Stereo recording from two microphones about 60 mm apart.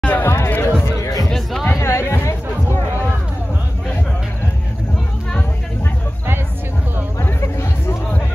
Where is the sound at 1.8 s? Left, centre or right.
Left.